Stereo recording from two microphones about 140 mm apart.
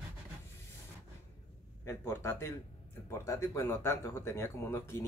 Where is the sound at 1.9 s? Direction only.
15° left (ahead or behind).